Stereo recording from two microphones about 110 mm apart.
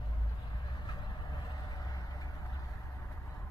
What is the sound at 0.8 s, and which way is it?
Vehicle, 45° left (ahead or behind).